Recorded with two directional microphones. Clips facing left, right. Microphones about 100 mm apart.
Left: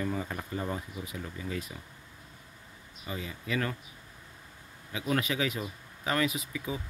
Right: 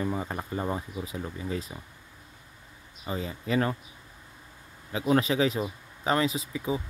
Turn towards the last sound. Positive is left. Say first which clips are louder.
# right 5 dB
turn(degrees=-25)  # may be behind; listen again after turning